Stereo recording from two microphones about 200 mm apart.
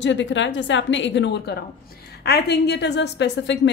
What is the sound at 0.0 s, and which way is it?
A woman's voice, 65° left (ahead or behind).